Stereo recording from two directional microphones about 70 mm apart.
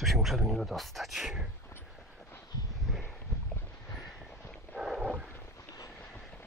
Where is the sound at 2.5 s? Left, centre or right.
Left.